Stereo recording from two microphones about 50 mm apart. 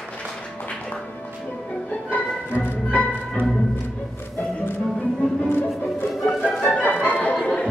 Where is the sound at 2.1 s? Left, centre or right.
Left.